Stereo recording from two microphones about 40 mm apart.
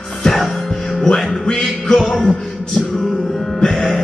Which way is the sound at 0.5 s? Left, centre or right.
Centre.